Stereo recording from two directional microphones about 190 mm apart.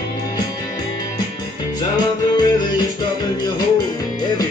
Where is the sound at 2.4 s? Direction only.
20° left (ahead or behind).